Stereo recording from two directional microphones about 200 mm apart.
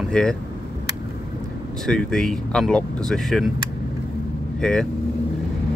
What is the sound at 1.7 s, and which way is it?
Speech, 5° left (ahead or behind).